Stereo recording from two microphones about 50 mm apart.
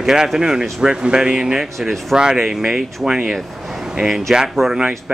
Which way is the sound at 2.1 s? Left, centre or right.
Centre.